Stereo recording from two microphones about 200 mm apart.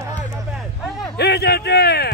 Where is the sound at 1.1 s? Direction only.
55° left (ahead or behind).